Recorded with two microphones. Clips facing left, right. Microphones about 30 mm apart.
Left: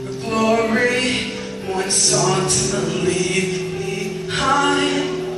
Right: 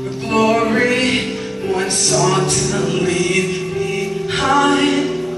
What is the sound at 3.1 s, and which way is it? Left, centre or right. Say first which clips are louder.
Music: right 3 dB; centre.